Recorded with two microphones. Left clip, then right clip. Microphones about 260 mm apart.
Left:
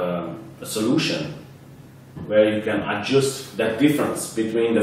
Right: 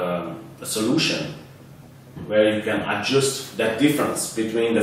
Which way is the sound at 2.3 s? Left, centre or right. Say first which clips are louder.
Left 1 dB; centre.